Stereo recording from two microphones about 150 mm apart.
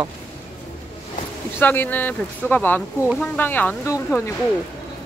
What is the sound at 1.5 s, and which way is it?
Speech, 15° left (ahead or behind).